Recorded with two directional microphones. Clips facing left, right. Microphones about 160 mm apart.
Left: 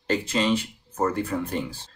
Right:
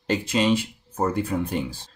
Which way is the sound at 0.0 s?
15° right (ahead or behind).